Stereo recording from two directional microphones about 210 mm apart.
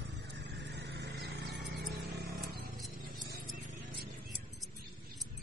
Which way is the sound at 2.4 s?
Centre (ahead or behind).